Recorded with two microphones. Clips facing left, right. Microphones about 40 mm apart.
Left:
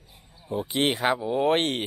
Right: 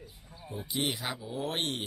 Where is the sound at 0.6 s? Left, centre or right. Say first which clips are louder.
Left 9 dB; left.